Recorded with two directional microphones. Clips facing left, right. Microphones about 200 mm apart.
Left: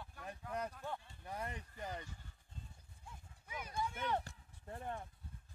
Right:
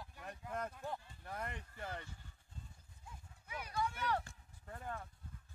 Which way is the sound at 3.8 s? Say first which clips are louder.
Right 1 dB; 20° left (ahead or behind).